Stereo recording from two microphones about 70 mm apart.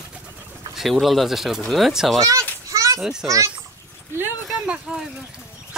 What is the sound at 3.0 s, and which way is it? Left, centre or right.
Speech, centre.